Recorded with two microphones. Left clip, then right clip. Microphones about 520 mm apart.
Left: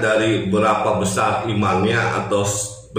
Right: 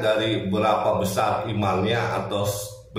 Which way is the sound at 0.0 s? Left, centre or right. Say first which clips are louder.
Left 5 dB; right.